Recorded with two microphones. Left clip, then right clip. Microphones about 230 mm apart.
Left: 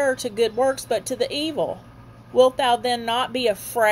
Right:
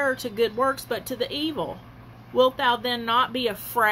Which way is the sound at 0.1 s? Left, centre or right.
Centre.